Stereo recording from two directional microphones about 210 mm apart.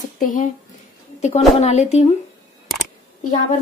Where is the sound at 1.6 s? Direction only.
30° left (ahead or behind).